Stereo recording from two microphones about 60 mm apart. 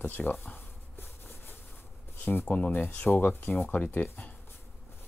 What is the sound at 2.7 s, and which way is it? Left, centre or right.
Speech, left.